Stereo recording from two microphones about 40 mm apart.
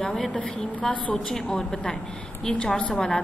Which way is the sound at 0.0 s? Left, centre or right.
Left.